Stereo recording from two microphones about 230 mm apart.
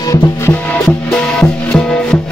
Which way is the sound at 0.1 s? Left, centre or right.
Centre.